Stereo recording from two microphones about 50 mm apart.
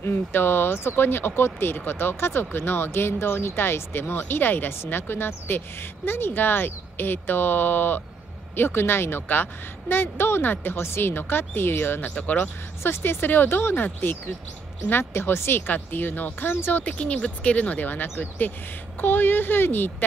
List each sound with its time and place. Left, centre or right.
0.0 s speech: left
12.2 s speech: left
12.8 s speech: left
15.6 s speech: left
16.8 s speech: left